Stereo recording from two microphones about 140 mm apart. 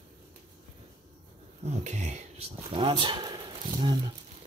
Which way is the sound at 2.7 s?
35° right (ahead or behind).